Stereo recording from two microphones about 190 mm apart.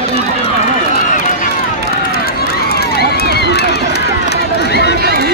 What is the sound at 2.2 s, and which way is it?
Run, 55° left (ahead or behind).